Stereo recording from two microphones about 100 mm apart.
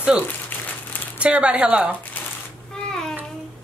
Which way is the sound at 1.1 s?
15° right (ahead or behind).